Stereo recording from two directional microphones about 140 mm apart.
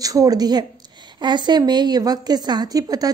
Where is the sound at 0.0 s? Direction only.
25° right (ahead or behind).